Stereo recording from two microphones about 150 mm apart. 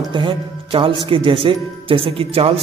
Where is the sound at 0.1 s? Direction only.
35° right (ahead or behind).